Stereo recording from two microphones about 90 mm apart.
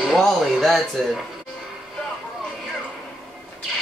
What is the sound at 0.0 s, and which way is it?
Speech, centre (ahead or behind).